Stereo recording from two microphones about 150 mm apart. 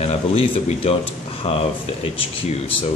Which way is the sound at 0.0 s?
45° left (ahead or behind).